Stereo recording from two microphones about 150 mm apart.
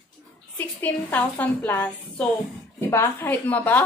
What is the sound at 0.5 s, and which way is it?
Speech, 10° left (ahead or behind).